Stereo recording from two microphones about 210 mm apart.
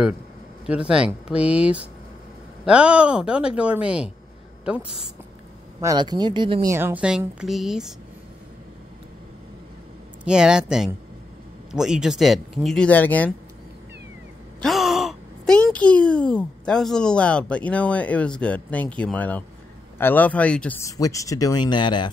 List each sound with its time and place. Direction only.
0.7 s speech: 5° right (ahead or behind)
4.8 s speech: 25° left (ahead or behind)
5.8 s speech: 20° right (ahead or behind)
6.7 s speech: 10° right (ahead or behind)
10.2 s speech: 5° right (ahead or behind)
14.6 s speech: centre (ahead or behind); by 22.1 s 20° left (ahead or behind)